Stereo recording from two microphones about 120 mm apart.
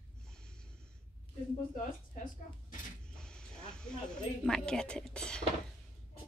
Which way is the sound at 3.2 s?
5° left (ahead or behind).